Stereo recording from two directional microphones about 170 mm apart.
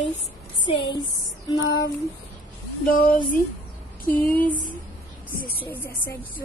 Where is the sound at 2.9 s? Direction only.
55° left (ahead or behind).